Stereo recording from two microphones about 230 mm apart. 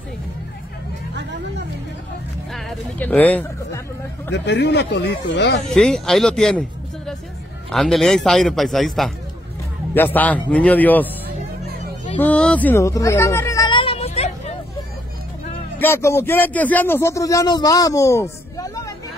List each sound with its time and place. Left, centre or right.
2.5 s speech: centre
4.3 s speech: left
5.7 s a man's voice: centre
7.7 s a man's voice: centre
12.2 s a sound: centre; by 14.3 s left
15.8 s a man's voice: centre